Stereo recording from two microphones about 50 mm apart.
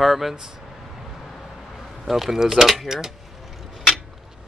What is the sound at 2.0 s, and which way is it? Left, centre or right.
Speech, centre.